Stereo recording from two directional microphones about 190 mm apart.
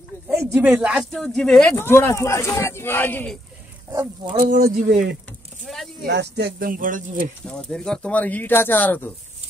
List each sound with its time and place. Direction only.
0.3 s speech: centre (ahead or behind)
3.9 s speech: 15° right (ahead or behind)
4.4 s speech: 45° right (ahead or behind)
6.0 s speech: 65° right (ahead or behind); by 7.2 s 45° right (ahead or behind)
7.4 s speech: 5° left (ahead or behind)